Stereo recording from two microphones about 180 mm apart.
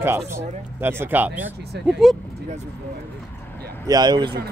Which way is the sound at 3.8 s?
20° right (ahead or behind).